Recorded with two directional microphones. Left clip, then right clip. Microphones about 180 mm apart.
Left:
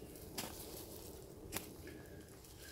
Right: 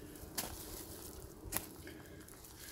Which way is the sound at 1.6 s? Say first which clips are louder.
Right 2 dB; centre (ahead or behind).